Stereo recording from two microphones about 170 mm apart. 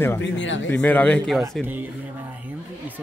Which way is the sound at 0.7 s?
10° left (ahead or behind).